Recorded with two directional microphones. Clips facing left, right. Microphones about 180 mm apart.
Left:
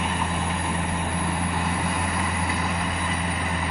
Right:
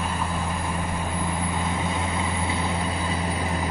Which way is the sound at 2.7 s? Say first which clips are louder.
Right 1 dB; 35° right (ahead or behind).